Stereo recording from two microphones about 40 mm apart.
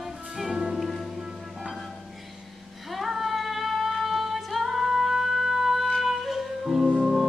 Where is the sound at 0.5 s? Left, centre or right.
Centre.